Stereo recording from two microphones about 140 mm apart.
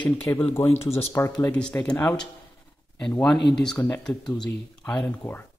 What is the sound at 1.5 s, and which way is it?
Speech, 5° left (ahead or behind).